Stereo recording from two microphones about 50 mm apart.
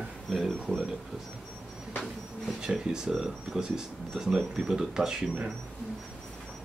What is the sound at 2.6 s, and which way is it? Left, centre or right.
Speech, centre.